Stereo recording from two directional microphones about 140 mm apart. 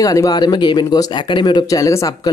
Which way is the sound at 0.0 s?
25° left (ahead or behind).